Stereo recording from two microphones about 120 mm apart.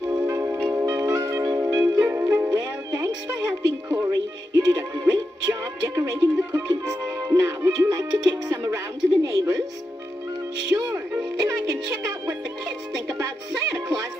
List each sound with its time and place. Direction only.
0.1 s music: 20° right (ahead or behind)
8.6 s a sound: 25° right (ahead or behind)
11.4 s music: 25° right (ahead or behind)